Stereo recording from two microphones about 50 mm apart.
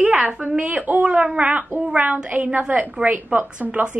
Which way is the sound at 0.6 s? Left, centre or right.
Right.